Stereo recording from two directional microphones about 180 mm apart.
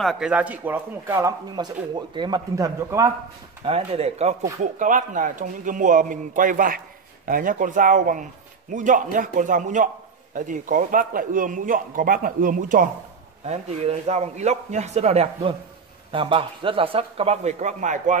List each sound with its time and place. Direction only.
0.0 s speech: centre (ahead or behind)
1.6 s speech: 25° right (ahead or behind)
3.6 s speech: 35° right (ahead or behind)
4.7 s a man's voice: 45° right (ahead or behind)
13.5 s speech: 35° right (ahead or behind)